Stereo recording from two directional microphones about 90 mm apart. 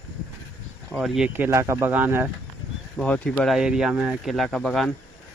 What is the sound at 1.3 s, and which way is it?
Speech, 30° right (ahead or behind).